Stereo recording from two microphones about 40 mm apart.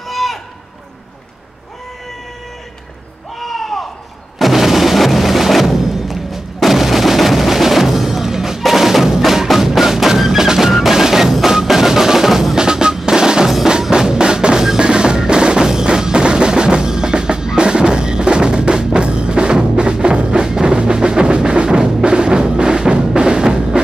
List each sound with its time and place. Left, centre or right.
0.0 s run: centre
3.3 s a sound: centre
4.4 s music: centre
12.5 s percussion: centre
13.7 s drum: centre